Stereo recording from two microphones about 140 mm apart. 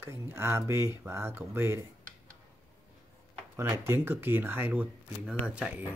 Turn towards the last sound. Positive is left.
turn(degrees=-10)  # may be behind; listen again after turning